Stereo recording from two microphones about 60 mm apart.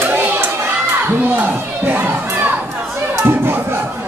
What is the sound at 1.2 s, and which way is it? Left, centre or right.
Speech, right.